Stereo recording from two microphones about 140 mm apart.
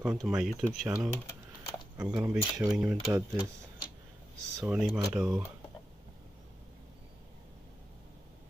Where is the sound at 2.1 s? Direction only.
10° right (ahead or behind).